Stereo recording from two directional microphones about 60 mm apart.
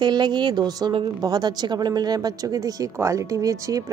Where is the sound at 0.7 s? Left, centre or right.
Right.